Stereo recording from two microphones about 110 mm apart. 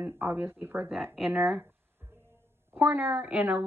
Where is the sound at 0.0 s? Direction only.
20° right (ahead or behind).